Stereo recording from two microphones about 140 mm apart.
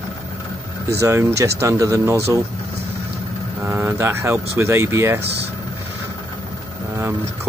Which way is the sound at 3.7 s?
15° right (ahead or behind).